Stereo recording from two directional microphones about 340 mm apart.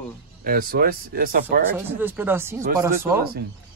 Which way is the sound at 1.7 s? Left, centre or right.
Centre.